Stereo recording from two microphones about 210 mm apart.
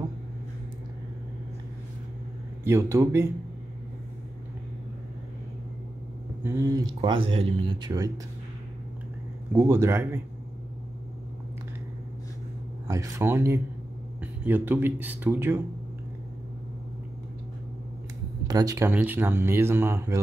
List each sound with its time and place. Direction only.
2.6 s speech: 15° right (ahead or behind)
6.4 s speech: 15° right (ahead or behind)
9.5 s speech: 10° right (ahead or behind)
12.8 s speech: 15° right (ahead or behind)
18.5 s speech: 15° right (ahead or behind)